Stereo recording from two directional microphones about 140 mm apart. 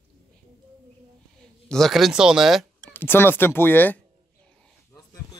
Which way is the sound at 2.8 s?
15° left (ahead or behind).